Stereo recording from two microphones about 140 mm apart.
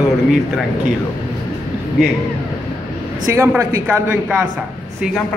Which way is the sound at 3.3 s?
20° right (ahead or behind).